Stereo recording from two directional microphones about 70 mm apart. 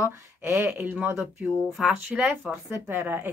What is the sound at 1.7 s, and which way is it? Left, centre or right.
Speech, centre.